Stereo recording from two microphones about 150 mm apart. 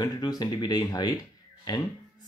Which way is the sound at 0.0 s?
25° left (ahead or behind).